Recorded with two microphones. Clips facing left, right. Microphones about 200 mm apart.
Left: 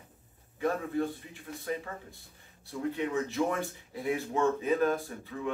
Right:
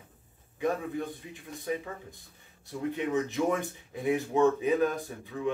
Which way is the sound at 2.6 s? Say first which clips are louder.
Right 1 dB; 20° right (ahead or behind).